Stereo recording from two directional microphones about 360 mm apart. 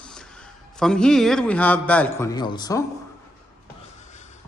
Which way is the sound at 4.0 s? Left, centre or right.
Centre.